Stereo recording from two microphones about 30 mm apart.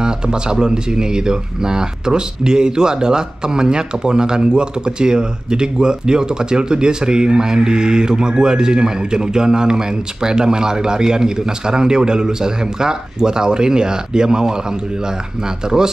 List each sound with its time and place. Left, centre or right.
0.0 s speech: right